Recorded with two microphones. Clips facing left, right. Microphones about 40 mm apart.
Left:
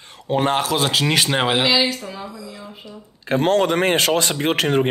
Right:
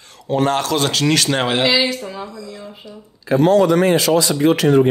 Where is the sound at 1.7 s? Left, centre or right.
Centre.